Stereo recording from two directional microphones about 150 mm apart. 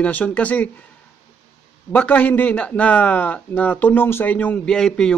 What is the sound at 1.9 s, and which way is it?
A man's voice, 10° left (ahead or behind).